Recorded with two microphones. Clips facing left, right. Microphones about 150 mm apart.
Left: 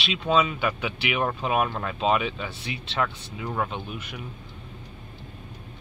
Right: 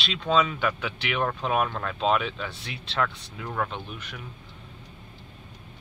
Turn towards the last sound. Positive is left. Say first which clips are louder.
# left 3 dB
turn(degrees=5)  # may be behind; listen again after turning